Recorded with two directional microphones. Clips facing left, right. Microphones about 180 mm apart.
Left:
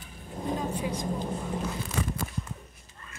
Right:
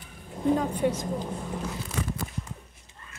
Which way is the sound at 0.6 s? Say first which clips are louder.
Right 5 dB; 65° right (ahead or behind).